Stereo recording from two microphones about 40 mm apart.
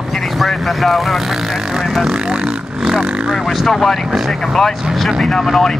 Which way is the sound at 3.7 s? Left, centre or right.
Centre.